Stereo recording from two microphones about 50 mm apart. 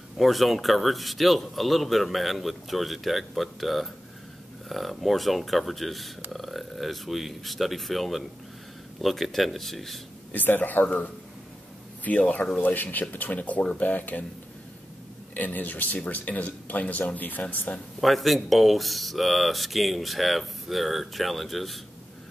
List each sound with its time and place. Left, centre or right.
0.2 s speech: centre
10.3 s speech: left
15.3 s speech: left
18.0 s speech: centre